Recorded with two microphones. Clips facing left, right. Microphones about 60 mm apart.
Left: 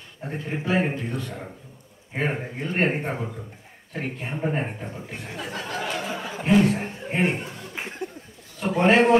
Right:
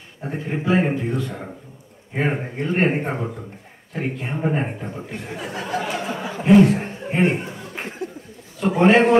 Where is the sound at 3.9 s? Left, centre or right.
Right.